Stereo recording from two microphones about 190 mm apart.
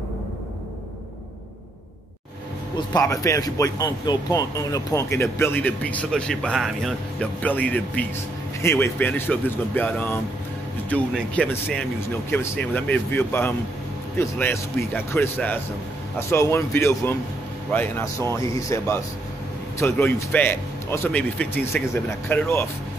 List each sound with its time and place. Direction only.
2.9 s speech: 20° left (ahead or behind)